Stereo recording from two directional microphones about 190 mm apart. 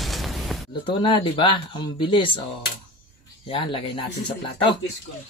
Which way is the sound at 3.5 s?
25° left (ahead or behind).